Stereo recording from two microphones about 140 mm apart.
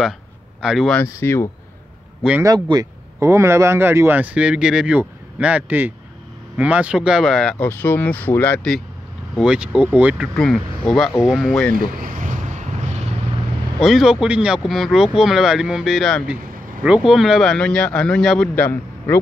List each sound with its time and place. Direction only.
0.6 s speech: 5° right (ahead or behind)
0.9 s speech: 20° left (ahead or behind)
2.4 s speech: 25° right (ahead or behind); by 8.7 s 15° left (ahead or behind)
9.3 s speech: 5° right (ahead or behind)
10.3 s speech: 5° left (ahead or behind)
11.7 s vehicle: 80° right; by 12.6 s 65° right (ahead or behind)
13.7 s speech: centre (ahead or behind)
18.5 s a man's voice: 15° left (ahead or behind)